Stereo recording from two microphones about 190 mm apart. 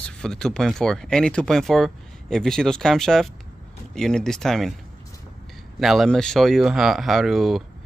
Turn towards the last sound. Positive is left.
turn(degrees=0)  # may be behind; listen again after turning